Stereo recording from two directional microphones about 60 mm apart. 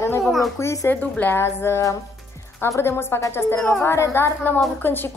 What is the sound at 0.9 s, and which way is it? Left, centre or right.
Speech, left.